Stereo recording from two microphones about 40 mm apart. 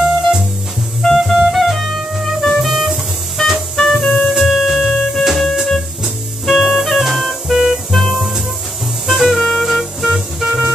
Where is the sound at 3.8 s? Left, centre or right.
Centre.